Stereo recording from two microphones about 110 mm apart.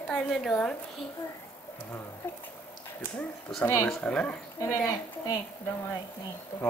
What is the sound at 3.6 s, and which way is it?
Speech, 20° left (ahead or behind).